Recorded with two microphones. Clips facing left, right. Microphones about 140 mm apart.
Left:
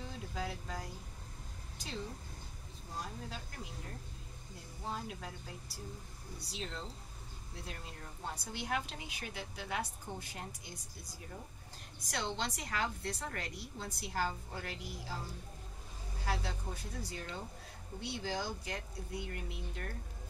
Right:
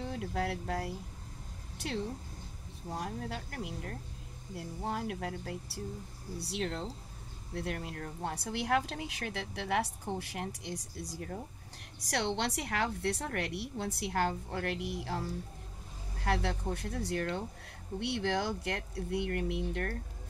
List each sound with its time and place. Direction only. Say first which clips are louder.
0.0 s speech: right 7 dB; 65° right (ahead or behind)
2.9 s speech: right 6 dB; 65° right (ahead or behind)
16.3 s speech: right 7 dB; 75° right (ahead or behind)